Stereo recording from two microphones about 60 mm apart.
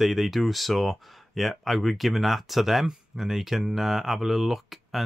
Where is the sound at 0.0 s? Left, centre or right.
Centre.